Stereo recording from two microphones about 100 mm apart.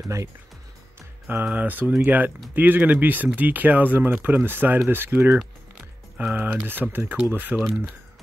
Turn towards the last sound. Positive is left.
turn(degrees=-15)  # may be behind; listen again after turning